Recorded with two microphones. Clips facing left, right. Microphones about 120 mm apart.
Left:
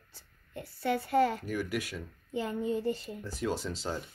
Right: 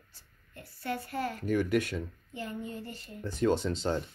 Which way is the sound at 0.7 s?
90° left.